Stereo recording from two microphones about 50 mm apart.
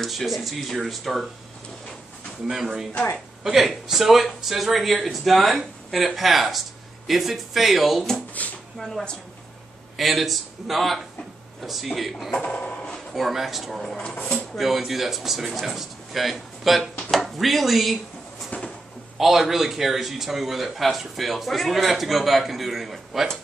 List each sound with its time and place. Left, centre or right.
0.0 s a man's voice: centre
2.4 s a man's voice: centre
8.4 s a sound: left
8.7 s a man's voice: centre
12.3 s speech: centre
12.5 s a sound: left
13.1 s a man's voice: centre
18.5 s a sound: left
19.1 s a man's voice: centre